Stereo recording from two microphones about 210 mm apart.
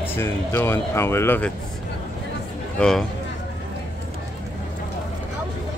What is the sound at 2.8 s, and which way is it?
Speech, centre (ahead or behind).